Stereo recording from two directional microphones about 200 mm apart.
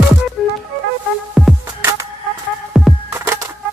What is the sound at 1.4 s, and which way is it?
Music, centre (ahead or behind).